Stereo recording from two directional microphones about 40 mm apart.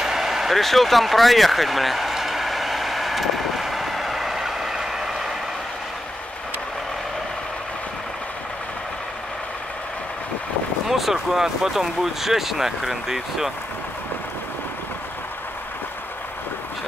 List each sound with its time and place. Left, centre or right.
0.0 s vehicle: centre
10.9 s speech: centre